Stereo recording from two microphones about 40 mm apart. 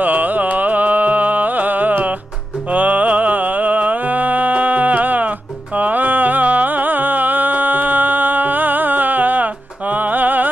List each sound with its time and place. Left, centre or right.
0.0 s music: right